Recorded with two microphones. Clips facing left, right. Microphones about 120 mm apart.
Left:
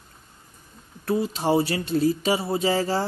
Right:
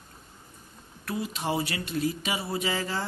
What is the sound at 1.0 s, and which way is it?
Speech, 30° left (ahead or behind).